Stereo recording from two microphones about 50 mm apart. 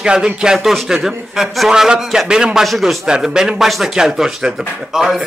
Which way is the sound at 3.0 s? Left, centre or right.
Centre.